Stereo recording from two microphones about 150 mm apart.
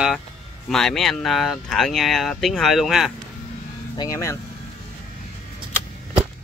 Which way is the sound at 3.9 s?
25° left (ahead or behind).